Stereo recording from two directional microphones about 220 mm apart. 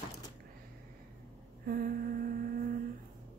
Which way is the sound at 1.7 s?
40° right (ahead or behind).